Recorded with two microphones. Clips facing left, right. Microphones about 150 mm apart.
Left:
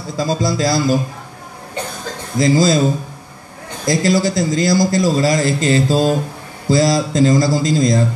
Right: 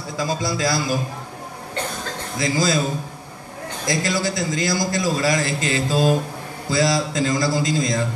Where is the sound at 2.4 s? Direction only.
35° left (ahead or behind).